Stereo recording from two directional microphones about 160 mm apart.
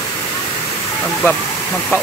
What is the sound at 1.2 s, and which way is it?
Speech, 15° left (ahead or behind).